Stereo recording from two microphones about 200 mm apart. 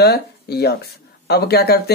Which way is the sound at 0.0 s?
55° left (ahead or behind).